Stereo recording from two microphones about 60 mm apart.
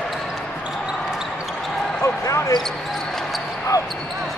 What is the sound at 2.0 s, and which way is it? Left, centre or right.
Basketball bounce, left.